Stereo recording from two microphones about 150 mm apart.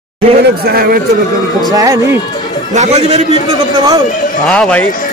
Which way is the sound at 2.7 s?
50° right (ahead or behind).